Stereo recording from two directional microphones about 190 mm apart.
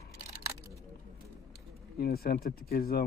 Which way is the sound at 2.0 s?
55° left (ahead or behind).